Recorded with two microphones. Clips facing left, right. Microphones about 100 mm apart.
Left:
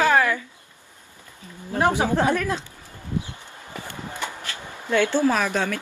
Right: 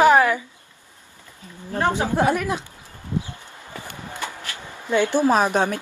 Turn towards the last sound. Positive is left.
turn(degrees=-20)  # may be behind; listen again after turning